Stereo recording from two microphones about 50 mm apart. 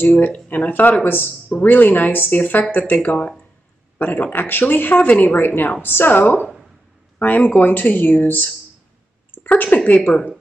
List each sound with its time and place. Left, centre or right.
0.0 s speech: left
4.0 s speech: left
9.8 s speech: left